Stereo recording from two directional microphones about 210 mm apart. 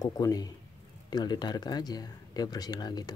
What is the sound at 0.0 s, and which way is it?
A man's voice, 15° left (ahead or behind).